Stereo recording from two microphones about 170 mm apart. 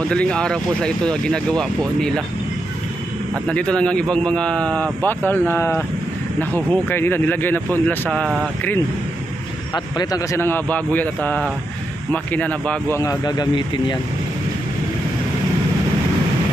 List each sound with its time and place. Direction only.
0.1 s speech: 5° left (ahead or behind)
3.4 s a man's voice: 5° left (ahead or behind)
9.9 s a man's voice: 20° left (ahead or behind)
12.9 s speech: 20° left (ahead or behind)